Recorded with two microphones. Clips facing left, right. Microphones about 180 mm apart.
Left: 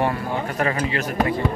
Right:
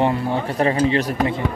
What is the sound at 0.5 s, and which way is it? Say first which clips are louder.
Speech: right 7 dB; 30° right (ahead or behind).